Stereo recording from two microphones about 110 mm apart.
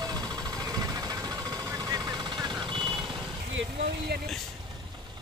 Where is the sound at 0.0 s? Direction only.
35° right (ahead or behind).